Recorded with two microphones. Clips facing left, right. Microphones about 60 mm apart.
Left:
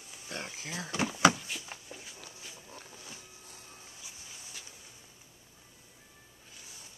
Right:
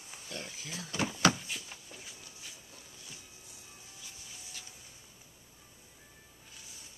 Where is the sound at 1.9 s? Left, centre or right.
Centre.